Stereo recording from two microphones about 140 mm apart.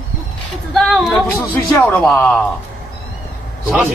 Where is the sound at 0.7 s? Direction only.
Centre (ahead or behind).